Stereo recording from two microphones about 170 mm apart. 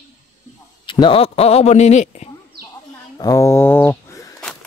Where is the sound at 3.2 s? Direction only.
20° left (ahead or behind).